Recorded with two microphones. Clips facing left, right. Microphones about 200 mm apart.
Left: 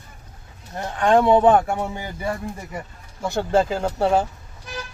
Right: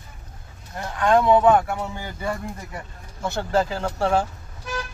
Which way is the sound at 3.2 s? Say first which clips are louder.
Left 3 dB; 15° left (ahead or behind).